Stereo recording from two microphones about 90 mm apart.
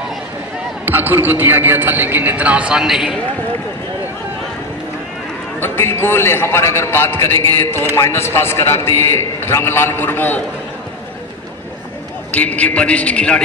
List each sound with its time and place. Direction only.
0.8 s a man's voice: 20° right (ahead or behind); by 3.2 s 5° right (ahead or behind)
5.6 s a man's voice: 25° left (ahead or behind)
12.4 s a man's voice: 15° left (ahead or behind)